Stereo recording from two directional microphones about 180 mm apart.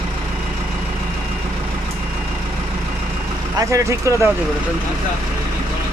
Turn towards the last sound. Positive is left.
turn(degrees=-15)  # may be behind; listen again after turning